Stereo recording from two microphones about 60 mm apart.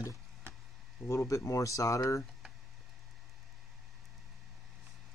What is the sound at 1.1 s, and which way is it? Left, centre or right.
Speech, left.